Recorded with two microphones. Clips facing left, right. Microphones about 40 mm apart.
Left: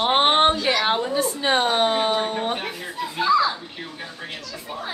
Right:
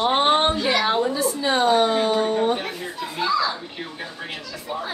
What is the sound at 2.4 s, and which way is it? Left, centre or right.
Speech, left.